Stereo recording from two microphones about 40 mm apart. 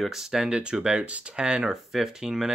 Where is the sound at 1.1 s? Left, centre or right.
Right.